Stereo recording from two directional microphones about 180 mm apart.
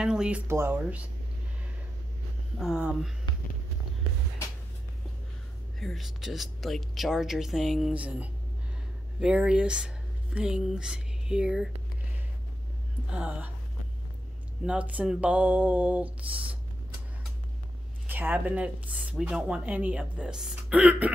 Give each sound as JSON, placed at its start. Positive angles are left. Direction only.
{"t": 0.0, "sound": "speech", "side_deg": -5}
{"t": 2.6, "sound": "speech", "side_deg": -5}
{"t": 5.8, "sound": "speech", "side_deg": 0}
{"t": 13.1, "sound": "speech", "side_deg": -5}
{"t": 14.6, "sound": "speech", "side_deg": -5}
{"t": 18.0, "sound": "speech", "side_deg": -10}